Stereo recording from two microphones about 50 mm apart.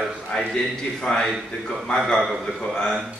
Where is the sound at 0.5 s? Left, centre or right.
Centre.